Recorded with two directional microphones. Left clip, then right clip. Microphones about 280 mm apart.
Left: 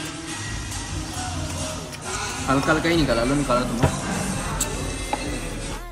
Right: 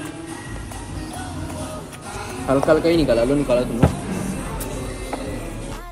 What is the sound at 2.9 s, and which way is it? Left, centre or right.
Speech, left.